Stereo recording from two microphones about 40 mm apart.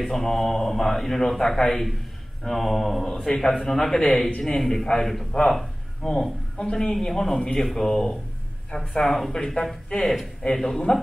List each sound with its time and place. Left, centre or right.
0.0 s a man's voice: centre
1.7 s mantra: centre
3.1 s a man's voice: centre
5.5 s a sound: centre
6.6 s a man's voice: centre
8.7 s mantra: centre
9.3 s a man's voice: centre